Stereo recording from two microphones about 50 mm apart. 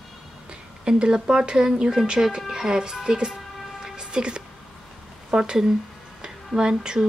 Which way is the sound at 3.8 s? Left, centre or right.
Centre.